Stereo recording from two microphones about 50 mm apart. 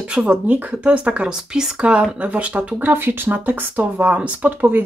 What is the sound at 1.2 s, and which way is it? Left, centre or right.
Speech, centre.